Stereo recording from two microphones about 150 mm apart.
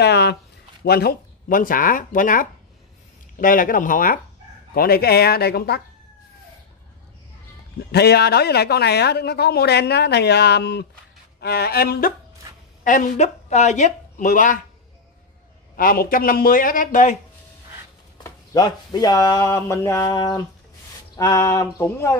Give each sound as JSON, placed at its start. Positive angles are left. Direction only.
{"t": 0.0, "sound": "a sound", "side_deg": 90}
{"t": 0.8, "sound": "speech", "side_deg": 90}
{"t": 4.7, "sound": "a woman's voice", "side_deg": 90}
{"t": 7.9, "sound": "a woman's voice", "side_deg": 90}
{"t": 12.8, "sound": "speech", "side_deg": 60}
{"t": 15.7, "sound": "speech", "side_deg": 70}
{"t": 18.2, "sound": "speech", "side_deg": 25}